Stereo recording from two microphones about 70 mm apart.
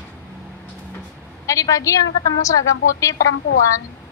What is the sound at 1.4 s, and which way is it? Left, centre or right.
A woman's voice, left.